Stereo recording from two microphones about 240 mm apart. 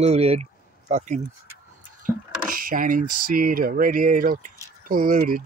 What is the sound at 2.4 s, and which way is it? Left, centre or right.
Speech, right.